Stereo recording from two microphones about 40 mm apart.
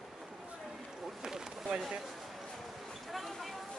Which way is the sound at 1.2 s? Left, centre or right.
Centre.